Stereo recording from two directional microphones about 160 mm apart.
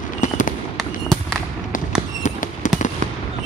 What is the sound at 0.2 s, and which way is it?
Fireworks, 50° left (ahead or behind).